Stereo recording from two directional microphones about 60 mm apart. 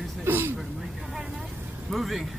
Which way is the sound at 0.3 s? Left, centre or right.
Right.